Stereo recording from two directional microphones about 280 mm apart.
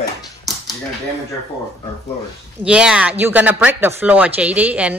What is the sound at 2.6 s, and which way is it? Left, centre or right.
Speech, centre.